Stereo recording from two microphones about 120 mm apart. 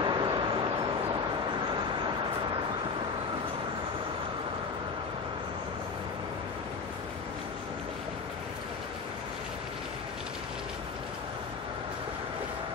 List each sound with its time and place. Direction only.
0.0 s dog: 40° right (ahead or behind)